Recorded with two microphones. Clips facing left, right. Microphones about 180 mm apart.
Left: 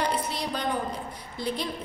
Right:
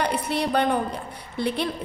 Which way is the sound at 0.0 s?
65° right (ahead or behind).